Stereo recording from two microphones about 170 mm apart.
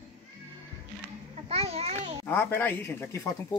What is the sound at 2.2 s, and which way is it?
Speech, 10° left (ahead or behind).